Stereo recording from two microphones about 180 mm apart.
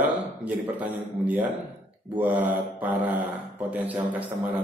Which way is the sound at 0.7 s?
10° right (ahead or behind).